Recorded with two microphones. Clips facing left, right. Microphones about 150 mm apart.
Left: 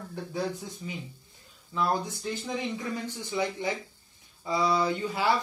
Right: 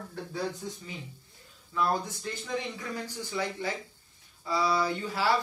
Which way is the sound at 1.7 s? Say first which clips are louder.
Left 1 dB; 20° left (ahead or behind).